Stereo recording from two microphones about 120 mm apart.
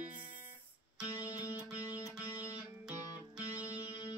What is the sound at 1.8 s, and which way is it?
Music, 30° left (ahead or behind).